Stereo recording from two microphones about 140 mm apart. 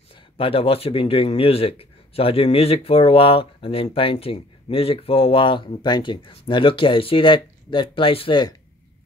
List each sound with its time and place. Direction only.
0.1 s speech: 40° left (ahead or behind)